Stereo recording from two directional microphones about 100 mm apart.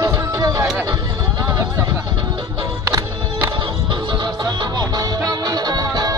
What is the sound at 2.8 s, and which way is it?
Music, 30° right (ahead or behind).